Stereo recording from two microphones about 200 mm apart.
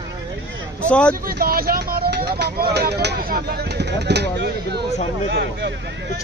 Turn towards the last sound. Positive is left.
turn(degrees=-60)  # may be behind; listen again after turning